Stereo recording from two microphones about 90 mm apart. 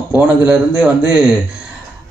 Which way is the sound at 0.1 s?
15° right (ahead or behind).